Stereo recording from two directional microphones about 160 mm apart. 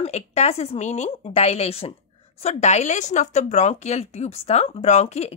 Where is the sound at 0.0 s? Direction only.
40° left (ahead or behind).